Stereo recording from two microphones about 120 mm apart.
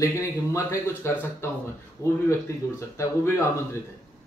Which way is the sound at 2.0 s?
25° right (ahead or behind).